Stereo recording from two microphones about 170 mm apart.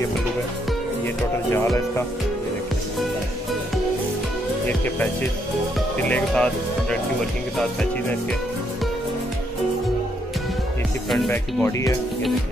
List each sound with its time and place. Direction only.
1.0 s speech: 15° left (ahead or behind)
4.6 s speech: 10° left (ahead or behind)
11.2 s speech: 15° left (ahead or behind)